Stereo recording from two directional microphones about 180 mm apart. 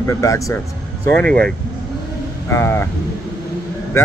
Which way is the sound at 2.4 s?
15° left (ahead or behind).